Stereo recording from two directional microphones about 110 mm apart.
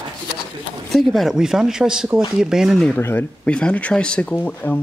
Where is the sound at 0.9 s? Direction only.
Centre (ahead or behind).